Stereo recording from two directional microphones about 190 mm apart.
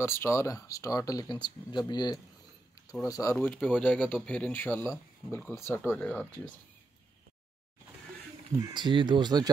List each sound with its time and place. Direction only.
0.0 s speech: 15° left (ahead or behind)
8.5 s speech: 25° right (ahead or behind)